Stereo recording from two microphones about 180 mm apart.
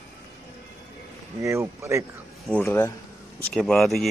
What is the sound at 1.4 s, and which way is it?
Speech, 15° right (ahead or behind).